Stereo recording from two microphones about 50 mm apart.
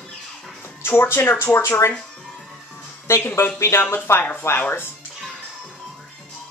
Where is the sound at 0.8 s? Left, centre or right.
Left.